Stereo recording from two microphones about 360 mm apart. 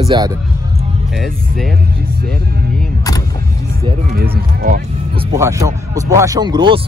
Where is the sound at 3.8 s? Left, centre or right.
Right.